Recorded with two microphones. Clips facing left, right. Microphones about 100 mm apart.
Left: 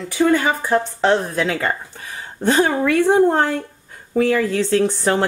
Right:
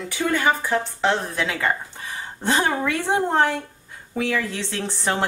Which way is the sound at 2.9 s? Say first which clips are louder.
Left 8 dB; 45° left (ahead or behind).